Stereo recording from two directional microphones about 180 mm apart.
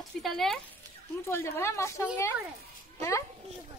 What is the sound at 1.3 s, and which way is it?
A woman's voice, 15° left (ahead or behind).